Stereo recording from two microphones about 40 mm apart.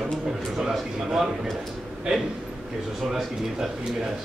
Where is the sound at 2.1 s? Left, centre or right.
Centre.